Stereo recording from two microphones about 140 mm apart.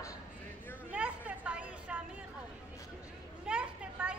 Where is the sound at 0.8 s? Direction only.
10° right (ahead or behind).